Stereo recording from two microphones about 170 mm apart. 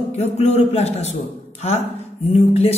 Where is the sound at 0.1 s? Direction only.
40° left (ahead or behind).